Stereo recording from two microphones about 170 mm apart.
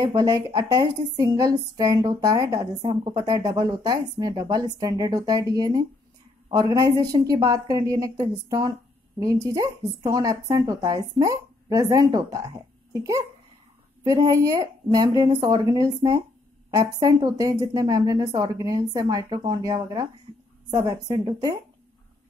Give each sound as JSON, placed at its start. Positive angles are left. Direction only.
{"t": 0.0, "sound": "a woman's voice", "side_deg": -20}